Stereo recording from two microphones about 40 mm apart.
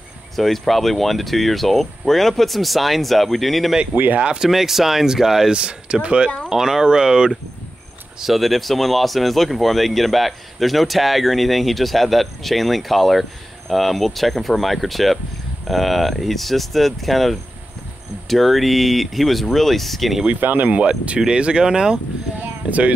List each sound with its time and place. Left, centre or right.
0.4 s speech: centre
3.9 s speech: right
4.4 s speech: centre
5.5 s speech: right
6.5 s speech: centre
8.2 s speech: centre
20.3 s speech: right
20.6 s speech: right
22.4 s a sound: right